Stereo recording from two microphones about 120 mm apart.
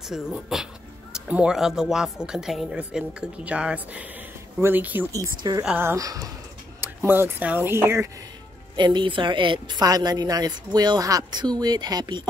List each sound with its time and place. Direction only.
0.1 s speech: 5° right (ahead or behind)
5.4 s a woman's voice: 30° right (ahead or behind)
6.8 s speech: 20° right (ahead or behind)
8.7 s a woman's voice: 40° right (ahead or behind)